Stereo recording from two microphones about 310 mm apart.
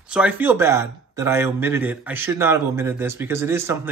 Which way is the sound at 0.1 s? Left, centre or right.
Centre.